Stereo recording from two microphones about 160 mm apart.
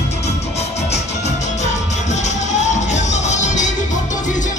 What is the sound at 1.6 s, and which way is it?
Music, 45° left (ahead or behind).